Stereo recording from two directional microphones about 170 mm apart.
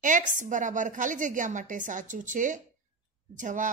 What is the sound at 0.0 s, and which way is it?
A woman's voice, 50° right (ahead or behind).